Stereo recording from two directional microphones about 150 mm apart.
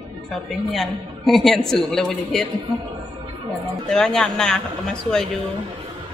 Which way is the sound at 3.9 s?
5° left (ahead or behind).